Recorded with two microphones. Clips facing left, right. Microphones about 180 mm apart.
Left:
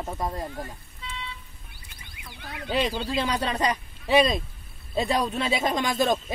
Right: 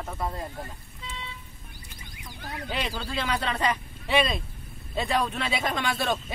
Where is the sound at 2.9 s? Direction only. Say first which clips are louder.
Left 5 dB; 15° left (ahead or behind).